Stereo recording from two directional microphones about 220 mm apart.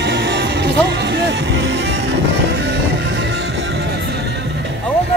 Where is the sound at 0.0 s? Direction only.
50° right (ahead or behind).